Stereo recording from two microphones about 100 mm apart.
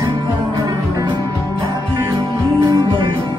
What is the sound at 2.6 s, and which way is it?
Music, 50° right (ahead or behind).